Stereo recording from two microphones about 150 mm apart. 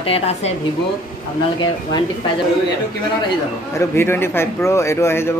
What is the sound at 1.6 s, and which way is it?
Speech, 30° left (ahead or behind).